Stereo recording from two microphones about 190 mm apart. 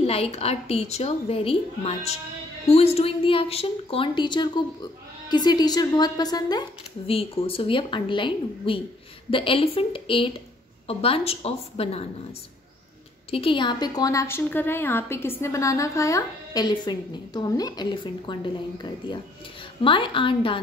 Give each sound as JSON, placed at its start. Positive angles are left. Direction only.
{"t": 0.0, "sound": "a woman's voice", "side_deg": 30}